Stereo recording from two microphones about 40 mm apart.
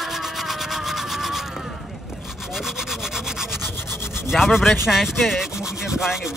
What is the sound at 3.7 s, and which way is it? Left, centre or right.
Rub, left.